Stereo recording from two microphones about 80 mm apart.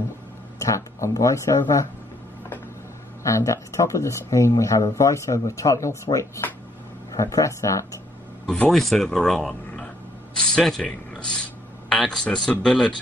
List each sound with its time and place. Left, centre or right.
0.6 s speech: left
3.3 s speech: left
7.1 s speech: left
8.5 s speech: centre